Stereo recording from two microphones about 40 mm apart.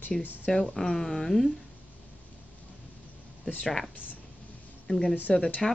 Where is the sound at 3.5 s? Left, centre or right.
Left.